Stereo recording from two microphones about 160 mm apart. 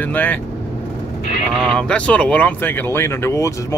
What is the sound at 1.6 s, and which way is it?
Speech, 5° left (ahead or behind).